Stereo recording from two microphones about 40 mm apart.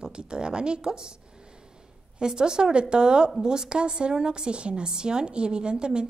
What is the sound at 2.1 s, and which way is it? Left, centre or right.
A woman's voice, centre.